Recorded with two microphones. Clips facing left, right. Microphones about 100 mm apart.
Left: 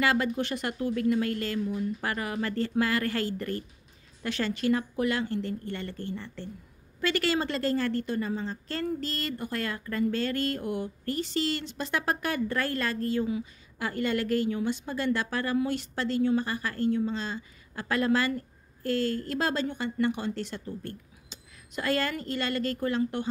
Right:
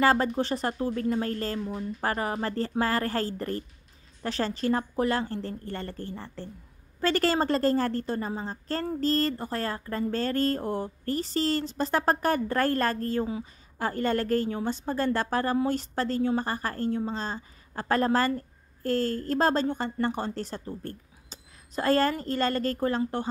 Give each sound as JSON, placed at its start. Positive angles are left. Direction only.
{"t": 0.0, "sound": "a woman's voice", "side_deg": -35}